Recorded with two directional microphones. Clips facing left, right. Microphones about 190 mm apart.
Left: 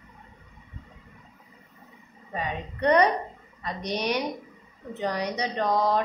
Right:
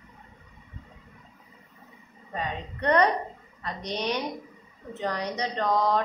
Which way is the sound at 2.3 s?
10° left (ahead or behind).